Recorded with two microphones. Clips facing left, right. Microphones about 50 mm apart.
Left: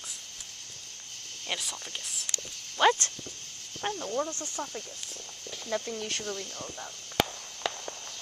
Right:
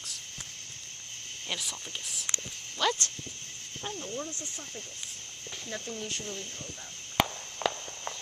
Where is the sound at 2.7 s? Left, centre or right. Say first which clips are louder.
Left 6 dB; left.